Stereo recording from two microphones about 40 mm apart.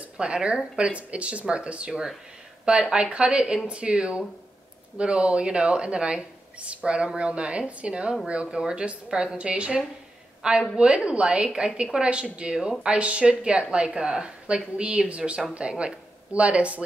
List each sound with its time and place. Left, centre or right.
0.2 s speech: right